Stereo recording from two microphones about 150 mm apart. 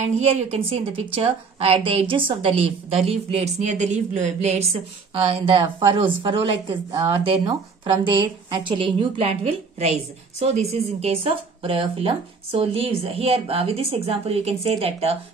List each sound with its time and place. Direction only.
0.0 s a woman's voice: 45° right (ahead or behind)
5.1 s a woman's voice: 35° right (ahead or behind)